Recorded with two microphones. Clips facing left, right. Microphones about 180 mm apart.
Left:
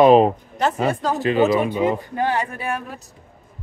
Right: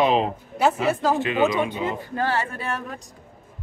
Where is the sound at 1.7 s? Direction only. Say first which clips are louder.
Left 7 dB; 15° left (ahead or behind).